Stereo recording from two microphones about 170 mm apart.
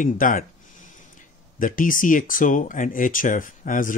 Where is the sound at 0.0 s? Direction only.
50° left (ahead or behind).